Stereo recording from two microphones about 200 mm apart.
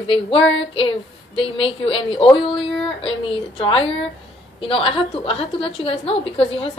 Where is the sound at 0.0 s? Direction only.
25° left (ahead or behind).